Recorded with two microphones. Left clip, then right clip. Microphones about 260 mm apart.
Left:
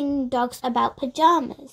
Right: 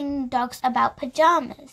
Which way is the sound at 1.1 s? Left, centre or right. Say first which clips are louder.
Even; right.